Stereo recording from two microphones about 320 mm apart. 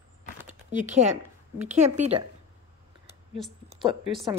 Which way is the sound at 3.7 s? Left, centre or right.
Centre.